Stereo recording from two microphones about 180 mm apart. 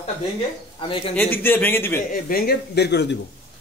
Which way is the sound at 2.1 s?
55° left (ahead or behind).